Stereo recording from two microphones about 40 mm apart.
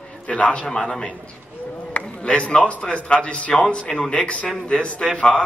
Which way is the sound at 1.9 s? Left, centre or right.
Left.